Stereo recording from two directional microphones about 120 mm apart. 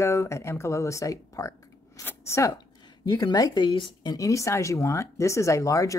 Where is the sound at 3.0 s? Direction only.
30° left (ahead or behind).